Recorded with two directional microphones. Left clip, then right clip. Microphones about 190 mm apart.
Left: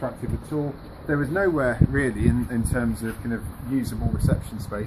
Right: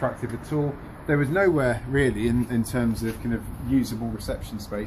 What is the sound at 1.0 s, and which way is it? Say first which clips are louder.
Speech: right 2 dB; 25° right (ahead or behind).